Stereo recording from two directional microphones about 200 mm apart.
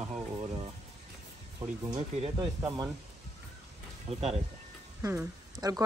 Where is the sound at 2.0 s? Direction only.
25° right (ahead or behind).